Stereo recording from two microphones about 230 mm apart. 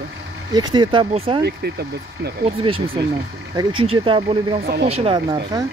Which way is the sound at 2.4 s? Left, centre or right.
Right.